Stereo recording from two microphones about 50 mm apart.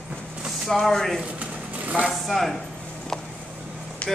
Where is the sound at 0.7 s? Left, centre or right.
Centre.